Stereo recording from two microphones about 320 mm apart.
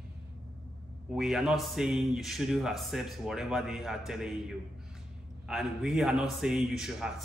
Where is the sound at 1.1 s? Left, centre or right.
Centre.